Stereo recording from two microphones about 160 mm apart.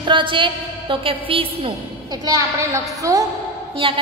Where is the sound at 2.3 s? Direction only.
20° right (ahead or behind).